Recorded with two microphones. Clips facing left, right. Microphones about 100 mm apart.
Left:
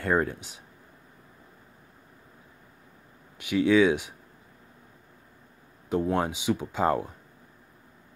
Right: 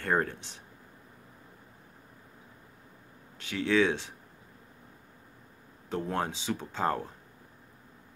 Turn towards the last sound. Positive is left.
turn(degrees=15)  # may be behind; listen again after turning